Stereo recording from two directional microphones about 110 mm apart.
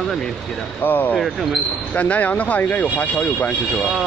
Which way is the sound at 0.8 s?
15° left (ahead or behind).